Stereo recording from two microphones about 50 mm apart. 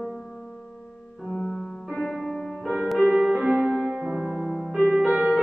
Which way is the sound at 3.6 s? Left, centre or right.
Centre.